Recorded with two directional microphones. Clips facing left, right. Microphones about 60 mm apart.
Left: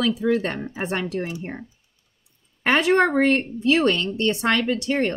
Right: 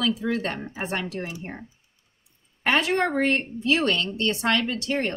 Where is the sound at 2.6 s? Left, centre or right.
Centre.